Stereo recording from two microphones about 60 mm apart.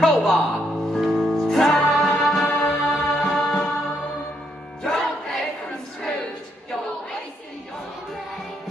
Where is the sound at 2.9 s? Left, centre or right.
Centre.